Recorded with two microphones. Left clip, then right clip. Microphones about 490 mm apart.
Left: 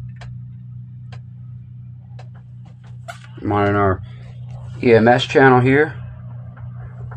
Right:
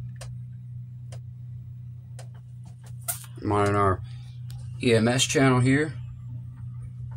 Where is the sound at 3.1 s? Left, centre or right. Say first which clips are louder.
Left 6 dB; right.